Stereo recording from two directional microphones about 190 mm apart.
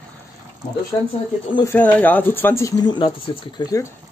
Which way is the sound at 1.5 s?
10° left (ahead or behind).